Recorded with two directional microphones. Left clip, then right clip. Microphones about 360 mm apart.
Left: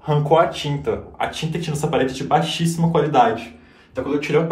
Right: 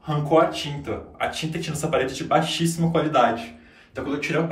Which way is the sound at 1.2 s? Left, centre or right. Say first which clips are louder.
Left 1 dB; centre.